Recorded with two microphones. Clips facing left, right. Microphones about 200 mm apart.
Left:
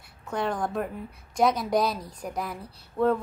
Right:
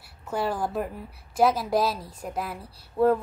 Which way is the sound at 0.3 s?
5° right (ahead or behind).